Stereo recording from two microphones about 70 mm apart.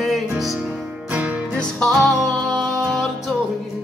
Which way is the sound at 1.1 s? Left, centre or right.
Right.